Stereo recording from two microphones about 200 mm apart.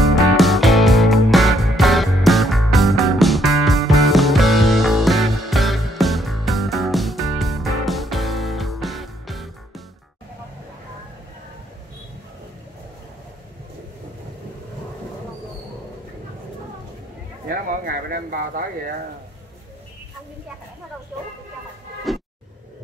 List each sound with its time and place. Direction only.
0.1 s music: centre (ahead or behind)
17.5 s a sound: 45° right (ahead or behind)
22.1 s music: centre (ahead or behind)